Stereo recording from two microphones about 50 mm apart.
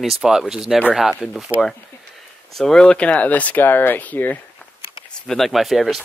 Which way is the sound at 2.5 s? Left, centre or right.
Centre.